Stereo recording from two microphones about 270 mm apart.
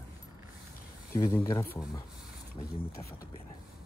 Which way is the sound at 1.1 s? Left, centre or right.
Centre.